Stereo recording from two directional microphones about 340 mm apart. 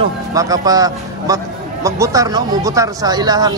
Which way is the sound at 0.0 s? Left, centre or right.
Centre.